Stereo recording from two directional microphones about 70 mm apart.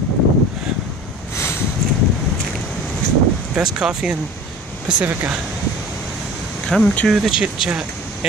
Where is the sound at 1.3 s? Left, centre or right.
Left.